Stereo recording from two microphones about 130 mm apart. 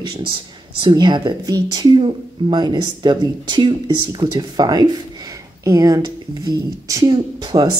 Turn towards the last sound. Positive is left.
turn(degrees=-30)  # may be behind; listen again after turning